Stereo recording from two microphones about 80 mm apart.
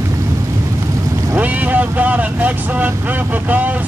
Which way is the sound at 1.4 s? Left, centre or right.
Centre.